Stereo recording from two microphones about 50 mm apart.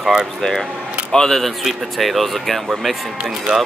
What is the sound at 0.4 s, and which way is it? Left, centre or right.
Speech, centre.